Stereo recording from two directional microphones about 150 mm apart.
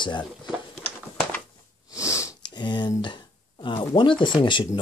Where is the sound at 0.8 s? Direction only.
10° left (ahead or behind).